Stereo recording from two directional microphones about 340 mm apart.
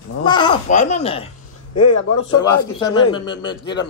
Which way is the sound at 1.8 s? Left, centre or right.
Left.